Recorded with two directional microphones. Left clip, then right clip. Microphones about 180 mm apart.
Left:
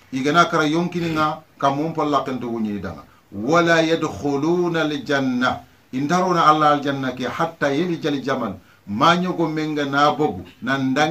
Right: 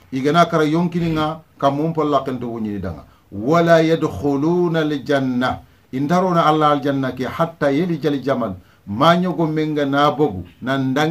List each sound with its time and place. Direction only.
0.1 s a man's voice: 40° right (ahead or behind)